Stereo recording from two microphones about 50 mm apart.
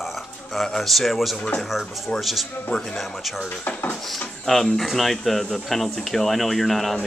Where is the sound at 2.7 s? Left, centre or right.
Centre.